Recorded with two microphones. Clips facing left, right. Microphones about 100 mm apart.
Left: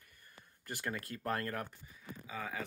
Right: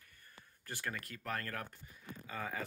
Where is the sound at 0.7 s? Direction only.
15° left (ahead or behind).